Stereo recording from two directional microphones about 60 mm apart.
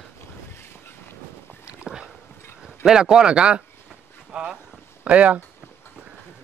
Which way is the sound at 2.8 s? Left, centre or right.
Centre.